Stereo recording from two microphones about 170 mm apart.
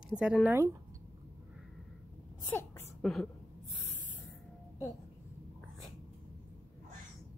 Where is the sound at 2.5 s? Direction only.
10° left (ahead or behind).